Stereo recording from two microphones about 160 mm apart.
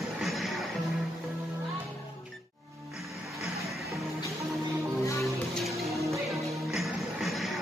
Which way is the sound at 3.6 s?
Centre (ahead or behind).